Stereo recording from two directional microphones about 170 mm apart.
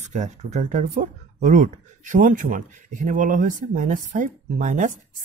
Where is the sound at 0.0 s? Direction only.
45° right (ahead or behind).